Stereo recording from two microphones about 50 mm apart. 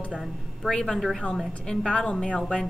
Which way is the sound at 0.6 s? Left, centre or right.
Centre.